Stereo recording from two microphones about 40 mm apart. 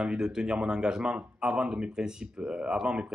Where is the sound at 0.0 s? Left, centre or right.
Centre.